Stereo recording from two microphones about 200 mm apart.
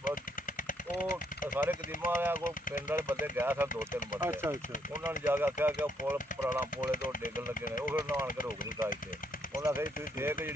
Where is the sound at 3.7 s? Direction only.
40° left (ahead or behind).